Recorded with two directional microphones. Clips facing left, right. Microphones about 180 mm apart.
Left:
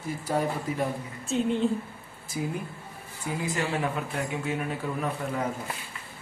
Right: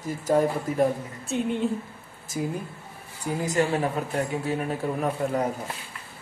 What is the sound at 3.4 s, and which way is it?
Speech, 40° right (ahead or behind).